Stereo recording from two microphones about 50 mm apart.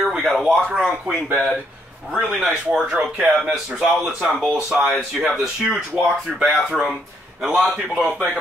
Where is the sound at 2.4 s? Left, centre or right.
Centre.